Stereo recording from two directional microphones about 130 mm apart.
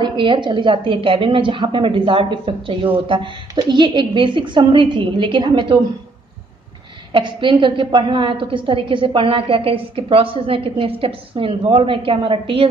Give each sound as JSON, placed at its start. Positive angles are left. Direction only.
{"t": 0.0, "sound": "a woman's voice", "side_deg": -35}
{"t": 7.1, "sound": "a woman's voice", "side_deg": -40}